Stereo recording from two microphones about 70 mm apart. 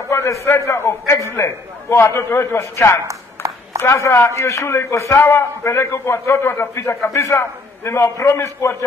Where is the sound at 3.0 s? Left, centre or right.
Right.